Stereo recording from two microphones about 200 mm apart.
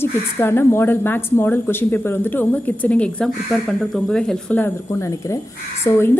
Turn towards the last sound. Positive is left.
turn(degrees=10)  # may be behind; listen again after turning